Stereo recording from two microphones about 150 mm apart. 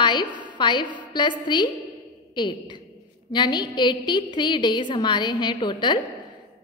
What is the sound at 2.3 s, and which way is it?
A woman's voice, 30° left (ahead or behind).